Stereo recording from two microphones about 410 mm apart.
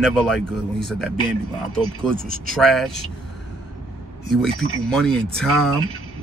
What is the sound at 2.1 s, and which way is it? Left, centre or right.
Speech, right.